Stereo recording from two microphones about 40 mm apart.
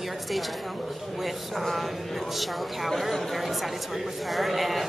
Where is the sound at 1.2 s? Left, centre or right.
Centre.